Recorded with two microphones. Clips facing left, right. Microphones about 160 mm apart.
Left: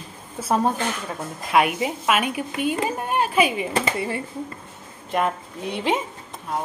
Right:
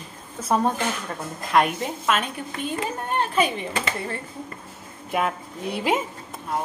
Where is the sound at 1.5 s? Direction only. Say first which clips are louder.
Left 1 dB; 5° left (ahead or behind).